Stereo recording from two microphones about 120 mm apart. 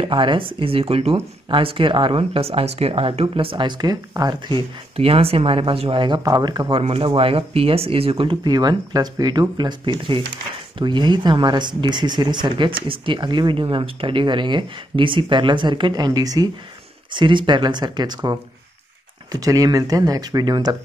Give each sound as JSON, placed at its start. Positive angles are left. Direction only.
{"t": 0.0, "sound": "speech", "side_deg": -45}
{"t": 4.9, "sound": "speech", "side_deg": -55}
{"t": 6.8, "sound": "speech", "side_deg": -50}
{"t": 19.4, "sound": "speech", "side_deg": -30}